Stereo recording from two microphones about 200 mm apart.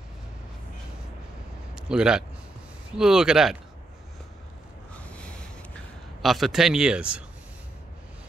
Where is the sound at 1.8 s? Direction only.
5° right (ahead or behind).